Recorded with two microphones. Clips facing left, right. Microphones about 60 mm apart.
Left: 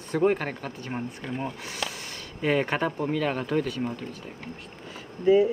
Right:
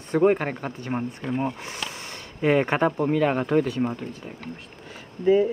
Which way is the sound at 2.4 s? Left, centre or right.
Centre.